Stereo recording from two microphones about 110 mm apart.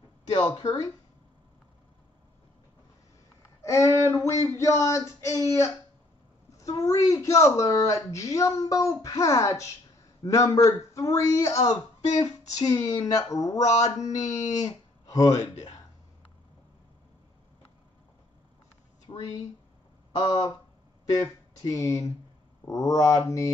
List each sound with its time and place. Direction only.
0.3 s speech: 40° left (ahead or behind)
3.6 s speech: 25° left (ahead or behind)
6.6 s speech: 30° left (ahead or behind)
19.1 s a sound: 50° left (ahead or behind)
20.2 s speech: 40° left (ahead or behind)